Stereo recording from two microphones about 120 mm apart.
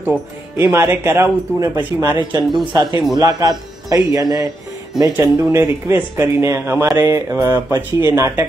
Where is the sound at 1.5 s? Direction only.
35° right (ahead or behind).